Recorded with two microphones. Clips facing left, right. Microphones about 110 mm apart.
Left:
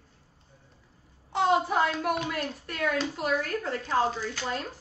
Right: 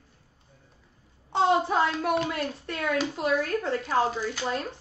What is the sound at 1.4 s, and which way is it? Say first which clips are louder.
Speech: right 1 dB; 30° right (ahead or behind).